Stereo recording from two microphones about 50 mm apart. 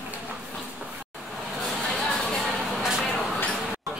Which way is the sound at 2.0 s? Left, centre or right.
Centre.